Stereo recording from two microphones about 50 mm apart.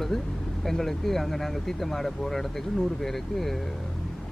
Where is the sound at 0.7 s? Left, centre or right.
Centre.